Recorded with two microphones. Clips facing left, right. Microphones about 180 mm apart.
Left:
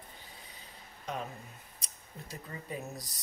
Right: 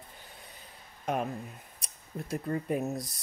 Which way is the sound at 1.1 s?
55° right (ahead or behind).